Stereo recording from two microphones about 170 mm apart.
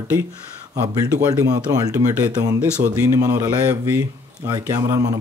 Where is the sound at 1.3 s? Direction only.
20° right (ahead or behind).